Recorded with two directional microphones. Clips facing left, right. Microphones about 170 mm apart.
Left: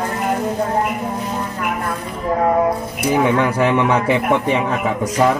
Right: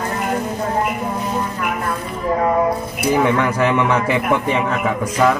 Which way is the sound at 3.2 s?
15° left (ahead or behind).